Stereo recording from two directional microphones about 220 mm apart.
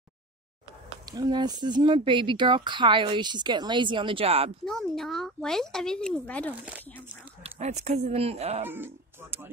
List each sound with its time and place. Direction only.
1.1 s speech: 20° right (ahead or behind)
4.6 s speech: centre (ahead or behind)
7.5 s speech: 30° right (ahead or behind)
8.6 s speech: 10° right (ahead or behind)